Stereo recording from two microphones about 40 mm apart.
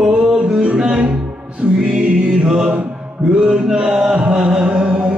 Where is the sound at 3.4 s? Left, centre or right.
Centre.